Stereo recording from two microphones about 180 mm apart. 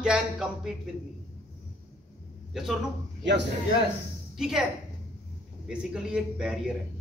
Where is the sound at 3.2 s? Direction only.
75° right (ahead or behind).